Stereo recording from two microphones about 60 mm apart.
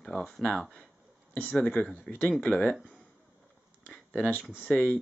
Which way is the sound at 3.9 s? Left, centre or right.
Centre.